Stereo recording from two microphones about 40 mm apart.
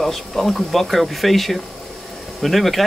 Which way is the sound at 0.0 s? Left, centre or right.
Centre.